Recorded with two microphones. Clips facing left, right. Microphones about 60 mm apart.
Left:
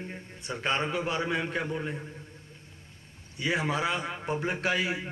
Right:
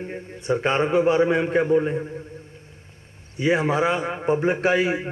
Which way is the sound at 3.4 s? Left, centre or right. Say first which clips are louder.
Right 8 dB; right.